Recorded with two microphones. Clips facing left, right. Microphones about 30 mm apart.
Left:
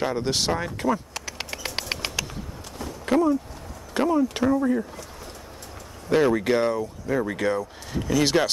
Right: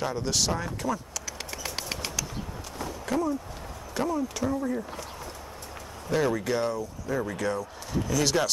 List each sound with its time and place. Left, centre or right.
0.0 s speech: left
0.8 s bird: left
3.1 s speech: left
6.0 s speech: left